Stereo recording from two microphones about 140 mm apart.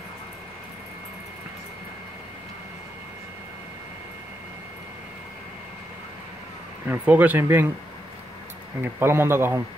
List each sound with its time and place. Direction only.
6.9 s speech: 10° right (ahead or behind)
8.8 s speech: 15° right (ahead or behind)